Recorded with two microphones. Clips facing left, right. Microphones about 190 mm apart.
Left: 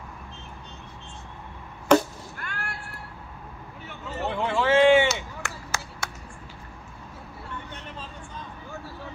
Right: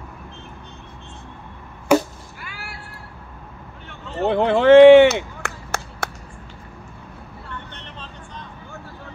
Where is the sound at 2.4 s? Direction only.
5° right (ahead or behind).